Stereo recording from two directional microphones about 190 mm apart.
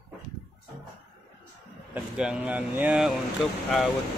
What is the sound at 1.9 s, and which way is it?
Speech, 5° right (ahead or behind).